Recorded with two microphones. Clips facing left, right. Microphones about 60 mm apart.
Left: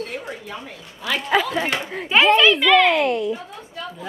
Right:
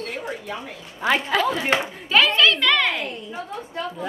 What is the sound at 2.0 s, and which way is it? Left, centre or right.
Speech, centre.